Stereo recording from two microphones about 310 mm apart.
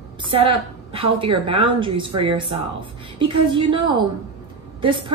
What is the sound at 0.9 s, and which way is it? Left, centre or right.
A woman's voice, centre.